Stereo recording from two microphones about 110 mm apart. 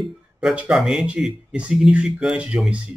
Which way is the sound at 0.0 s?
Centre (ahead or behind).